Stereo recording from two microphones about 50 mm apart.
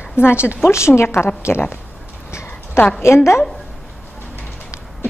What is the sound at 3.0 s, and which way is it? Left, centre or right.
Speech, left.